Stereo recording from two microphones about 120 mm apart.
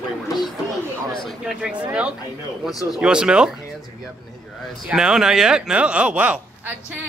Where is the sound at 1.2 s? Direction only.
5° right (ahead or behind).